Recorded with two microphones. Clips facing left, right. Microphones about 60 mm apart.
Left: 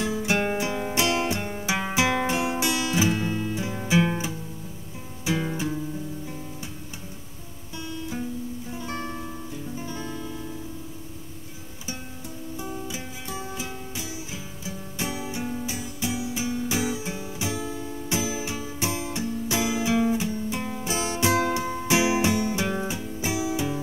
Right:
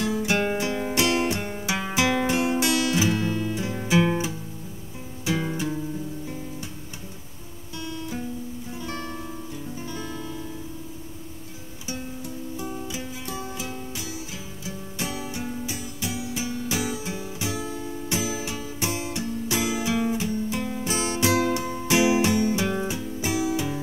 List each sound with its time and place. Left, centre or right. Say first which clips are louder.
0.0 s music: right 1 dB; centre
1.7 s music: even; centre
8.7 s guitar: even; centre
9.8 s music: even; centre
12.8 s music: right 2 dB; centre
15.0 s music: left 2 dB; centre